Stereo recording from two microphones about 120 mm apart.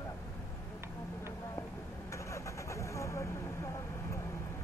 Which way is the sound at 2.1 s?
25° left (ahead or behind).